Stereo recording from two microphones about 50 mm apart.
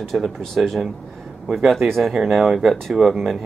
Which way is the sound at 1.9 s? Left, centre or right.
Centre.